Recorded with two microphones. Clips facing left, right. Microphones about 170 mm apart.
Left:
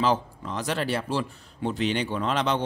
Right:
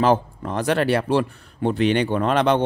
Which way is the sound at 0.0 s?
55° right (ahead or behind).